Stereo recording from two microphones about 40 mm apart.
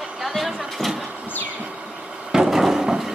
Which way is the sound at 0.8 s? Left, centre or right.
Centre.